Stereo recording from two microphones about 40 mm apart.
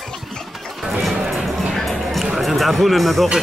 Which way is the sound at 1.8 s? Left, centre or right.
Centre.